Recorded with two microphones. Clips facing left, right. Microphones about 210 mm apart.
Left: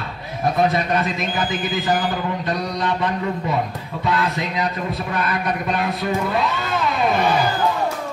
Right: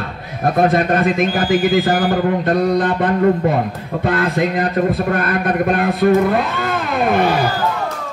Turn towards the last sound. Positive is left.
turn(degrees=-55)  # may be behind; listen again after turning